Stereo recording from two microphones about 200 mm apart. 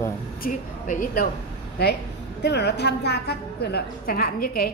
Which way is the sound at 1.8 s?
55° left (ahead or behind).